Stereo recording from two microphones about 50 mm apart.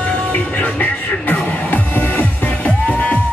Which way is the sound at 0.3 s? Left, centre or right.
Left.